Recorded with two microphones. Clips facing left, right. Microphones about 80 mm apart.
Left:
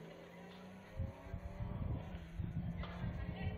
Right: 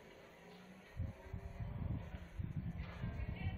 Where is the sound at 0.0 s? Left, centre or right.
Left.